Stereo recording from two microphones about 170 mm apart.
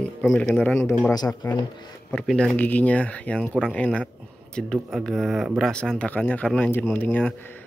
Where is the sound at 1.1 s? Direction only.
25° left (ahead or behind).